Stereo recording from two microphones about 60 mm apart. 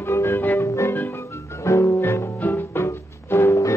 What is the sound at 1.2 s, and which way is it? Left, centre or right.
Music, left.